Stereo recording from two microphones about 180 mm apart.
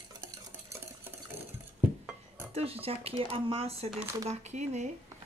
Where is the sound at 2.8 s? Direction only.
30° right (ahead or behind).